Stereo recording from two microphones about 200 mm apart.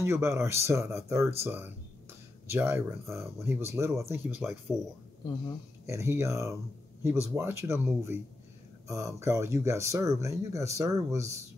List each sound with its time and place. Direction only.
0.0 s speech: 15° right (ahead or behind)
5.9 s speech: 15° right (ahead or behind)